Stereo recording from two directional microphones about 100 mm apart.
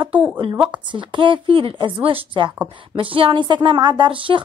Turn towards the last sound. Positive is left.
turn(degrees=-60)  # may be behind; listen again after turning